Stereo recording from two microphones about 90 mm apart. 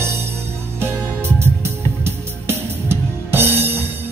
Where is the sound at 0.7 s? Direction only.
25° right (ahead or behind).